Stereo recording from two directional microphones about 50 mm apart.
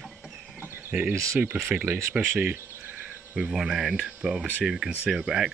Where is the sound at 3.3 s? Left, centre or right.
Centre.